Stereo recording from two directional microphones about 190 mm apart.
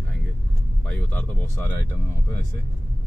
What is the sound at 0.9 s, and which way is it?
Speech, 10° left (ahead or behind).